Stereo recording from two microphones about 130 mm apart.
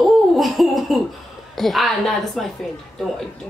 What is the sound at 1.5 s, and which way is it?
A woman's voice, centre (ahead or behind).